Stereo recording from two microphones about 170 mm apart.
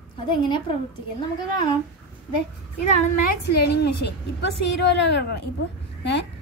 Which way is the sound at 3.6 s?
75° left (ahead or behind).